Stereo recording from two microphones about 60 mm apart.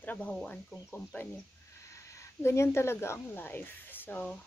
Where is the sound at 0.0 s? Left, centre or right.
Left.